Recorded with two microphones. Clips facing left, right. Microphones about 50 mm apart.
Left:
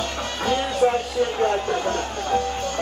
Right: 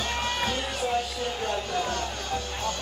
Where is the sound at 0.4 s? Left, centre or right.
Left.